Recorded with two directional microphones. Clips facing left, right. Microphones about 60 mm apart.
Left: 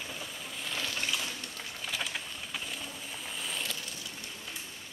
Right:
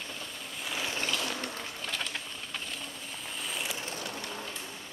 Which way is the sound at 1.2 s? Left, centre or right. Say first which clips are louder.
Right 5 dB; right.